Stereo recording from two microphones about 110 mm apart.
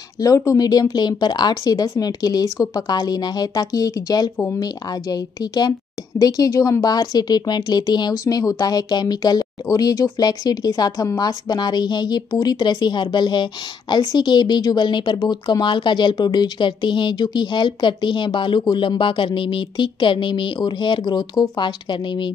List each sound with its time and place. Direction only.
0.2 s a woman's voice: 30° left (ahead or behind)